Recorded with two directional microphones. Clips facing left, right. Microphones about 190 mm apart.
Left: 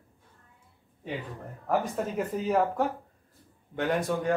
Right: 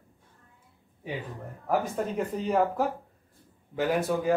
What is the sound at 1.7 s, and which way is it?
Speech, centre (ahead or behind).